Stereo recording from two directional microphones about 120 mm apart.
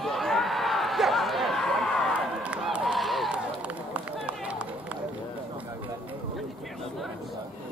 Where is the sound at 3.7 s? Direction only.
10° right (ahead or behind).